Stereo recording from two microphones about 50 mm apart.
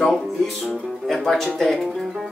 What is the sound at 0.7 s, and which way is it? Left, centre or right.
Speech, centre.